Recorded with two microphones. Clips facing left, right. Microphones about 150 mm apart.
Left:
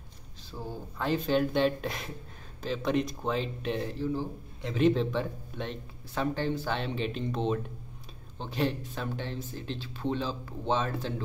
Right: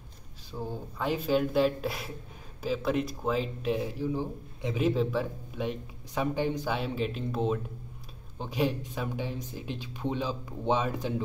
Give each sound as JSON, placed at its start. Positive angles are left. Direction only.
{"t": 0.5, "sound": "speech", "side_deg": -15}